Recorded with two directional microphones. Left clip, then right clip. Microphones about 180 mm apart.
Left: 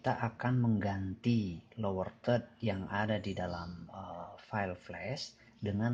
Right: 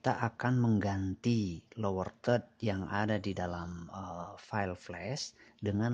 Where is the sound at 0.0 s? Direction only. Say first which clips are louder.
Right 2 dB; 50° right (ahead or behind).